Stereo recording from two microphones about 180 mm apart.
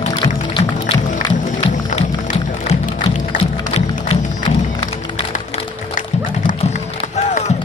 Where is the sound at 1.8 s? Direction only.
40° left (ahead or behind).